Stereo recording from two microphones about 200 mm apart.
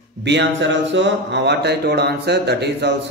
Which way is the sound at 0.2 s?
60° right (ahead or behind).